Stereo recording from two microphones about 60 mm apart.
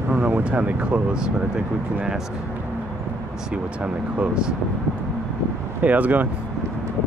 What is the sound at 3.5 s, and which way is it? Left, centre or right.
Speech, right.